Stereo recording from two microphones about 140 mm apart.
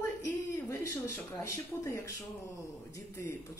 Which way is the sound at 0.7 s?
20° left (ahead or behind).